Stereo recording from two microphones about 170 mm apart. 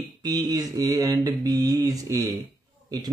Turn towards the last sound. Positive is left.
turn(degrees=-20)  # may be behind; listen again after turning